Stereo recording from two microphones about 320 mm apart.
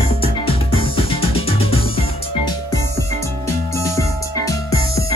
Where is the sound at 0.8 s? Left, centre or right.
Centre.